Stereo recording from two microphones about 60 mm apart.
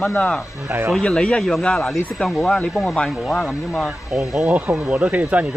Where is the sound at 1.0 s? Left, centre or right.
Centre.